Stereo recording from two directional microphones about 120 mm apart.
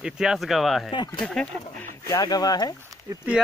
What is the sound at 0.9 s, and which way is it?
Speech, 40° left (ahead or behind).